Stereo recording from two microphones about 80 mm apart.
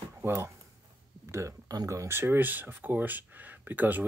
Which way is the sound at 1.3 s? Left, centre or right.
Right.